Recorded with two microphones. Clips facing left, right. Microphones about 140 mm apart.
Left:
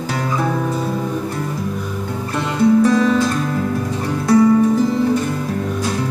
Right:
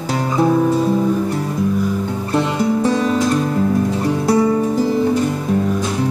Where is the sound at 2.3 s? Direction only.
30° right (ahead or behind).